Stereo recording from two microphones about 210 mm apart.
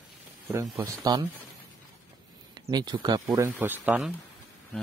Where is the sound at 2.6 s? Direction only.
20° right (ahead or behind).